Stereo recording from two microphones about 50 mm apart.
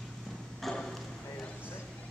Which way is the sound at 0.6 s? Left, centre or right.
Centre.